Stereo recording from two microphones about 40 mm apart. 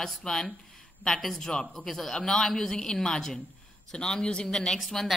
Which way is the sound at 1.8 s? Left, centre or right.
Centre.